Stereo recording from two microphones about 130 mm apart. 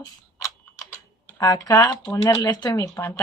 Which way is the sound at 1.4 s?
25° left (ahead or behind).